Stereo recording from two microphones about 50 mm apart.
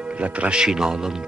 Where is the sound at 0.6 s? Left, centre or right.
Centre.